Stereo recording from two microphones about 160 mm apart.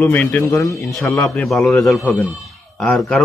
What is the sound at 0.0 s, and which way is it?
Speech, 10° left (ahead or behind).